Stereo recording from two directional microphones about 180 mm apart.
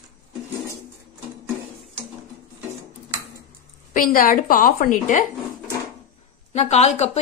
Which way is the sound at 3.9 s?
50° left (ahead or behind).